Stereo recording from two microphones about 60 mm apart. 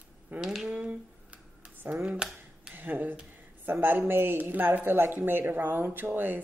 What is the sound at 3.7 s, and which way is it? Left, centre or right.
A woman's voice, right.